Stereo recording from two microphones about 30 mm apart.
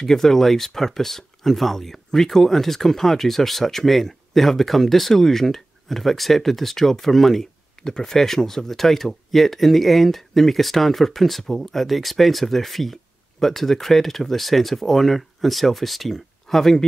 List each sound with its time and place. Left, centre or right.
0.0 s speech: centre
7.8 s a sound: left
8.1 s speech: centre